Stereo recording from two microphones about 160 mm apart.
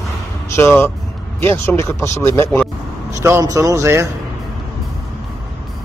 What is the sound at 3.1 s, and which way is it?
Speech, 20° right (ahead or behind).